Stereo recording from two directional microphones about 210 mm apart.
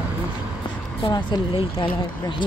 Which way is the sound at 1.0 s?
20° left (ahead or behind).